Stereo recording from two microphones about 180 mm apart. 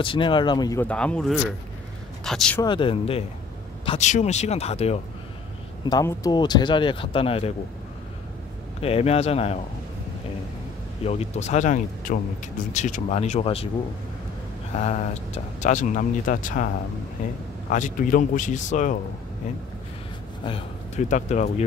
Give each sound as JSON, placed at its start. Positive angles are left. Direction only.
{"t": 0.0, "sound": "speech", "side_deg": 25}
{"t": 0.8, "sound": "speech", "side_deg": 5}
{"t": 2.6, "sound": "speech", "side_deg": 25}
{"t": 5.9, "sound": "speech", "side_deg": 20}
{"t": 8.8, "sound": "speech", "side_deg": 35}
{"t": 11.1, "sound": "speech", "side_deg": 40}
{"t": 15.6, "sound": "speech", "side_deg": 45}
{"t": 17.6, "sound": "speech", "side_deg": 45}
{"t": 20.4, "sound": "speech", "side_deg": 30}
{"t": 21.1, "sound": "speech", "side_deg": 40}